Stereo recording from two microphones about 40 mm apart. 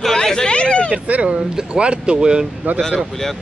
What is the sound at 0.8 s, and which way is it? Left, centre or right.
Speech, right.